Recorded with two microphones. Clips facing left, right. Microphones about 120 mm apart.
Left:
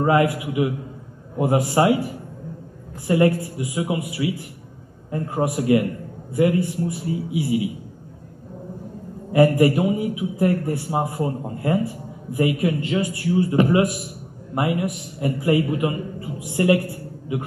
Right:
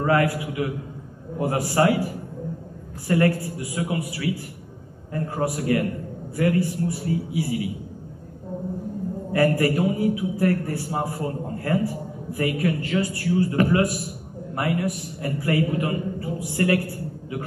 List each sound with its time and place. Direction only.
0.0 s a man's voice: 20° left (ahead or behind)
3.1 s a man's voice: 20° left (ahead or behind)
9.3 s a man's voice: 20° left (ahead or behind)